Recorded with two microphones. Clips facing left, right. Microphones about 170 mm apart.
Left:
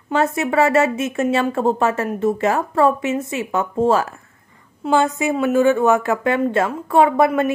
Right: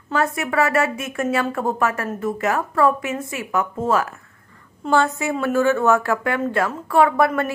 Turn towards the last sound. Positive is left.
turn(degrees=20)  # may be behind; listen again after turning